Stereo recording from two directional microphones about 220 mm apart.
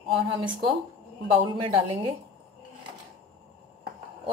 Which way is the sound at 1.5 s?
25° right (ahead or behind).